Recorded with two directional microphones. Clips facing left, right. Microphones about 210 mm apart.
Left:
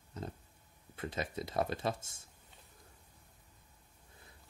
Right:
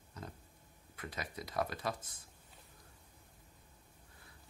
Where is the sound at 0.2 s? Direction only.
25° left (ahead or behind).